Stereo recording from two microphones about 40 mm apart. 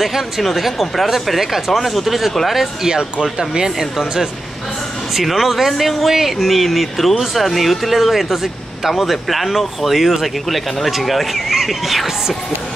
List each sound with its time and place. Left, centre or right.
0.0 s speech: centre
2.8 s speech: centre
5.1 s speech: centre